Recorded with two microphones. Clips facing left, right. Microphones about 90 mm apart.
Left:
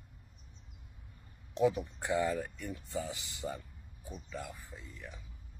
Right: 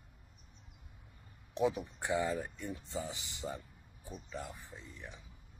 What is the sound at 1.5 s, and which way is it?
Speech, 15° right (ahead or behind).